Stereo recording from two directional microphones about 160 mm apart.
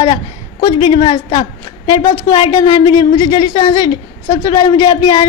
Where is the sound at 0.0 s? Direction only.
25° left (ahead or behind).